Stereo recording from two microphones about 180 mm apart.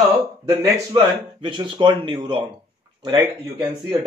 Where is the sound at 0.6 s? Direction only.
25° right (ahead or behind).